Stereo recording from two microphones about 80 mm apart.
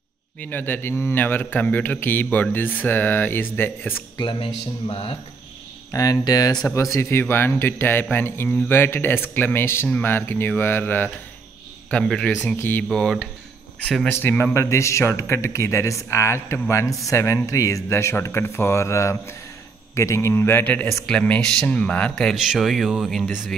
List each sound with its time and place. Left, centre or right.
0.4 s a man's voice: left
5.9 s speech: left
6.7 s a man's voice: left
11.9 s speech: centre
12.4 s a man's voice: left
12.8 s speech: centre
14.0 s a man's voice: left
20.6 s a man's voice: left
22.3 s speech: centre